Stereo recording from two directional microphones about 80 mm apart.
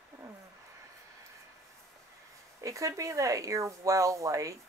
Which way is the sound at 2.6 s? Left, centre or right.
Right.